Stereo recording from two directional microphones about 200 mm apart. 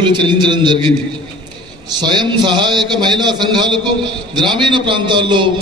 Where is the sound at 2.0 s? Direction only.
20° right (ahead or behind).